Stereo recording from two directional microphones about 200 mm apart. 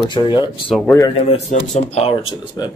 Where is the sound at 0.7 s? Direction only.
5° left (ahead or behind).